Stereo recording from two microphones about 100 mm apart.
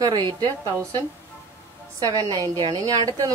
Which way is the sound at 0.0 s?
45° right (ahead or behind).